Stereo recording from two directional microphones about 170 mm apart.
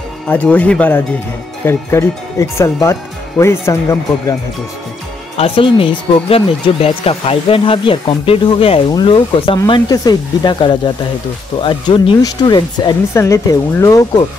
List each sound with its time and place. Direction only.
0.3 s speech: 10° left (ahead or behind)
5.4 s speech: 30° left (ahead or behind)